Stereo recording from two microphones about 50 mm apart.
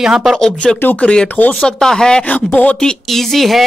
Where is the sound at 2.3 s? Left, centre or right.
Left.